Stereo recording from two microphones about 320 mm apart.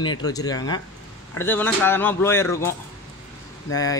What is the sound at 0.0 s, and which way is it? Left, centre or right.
Speech, centre.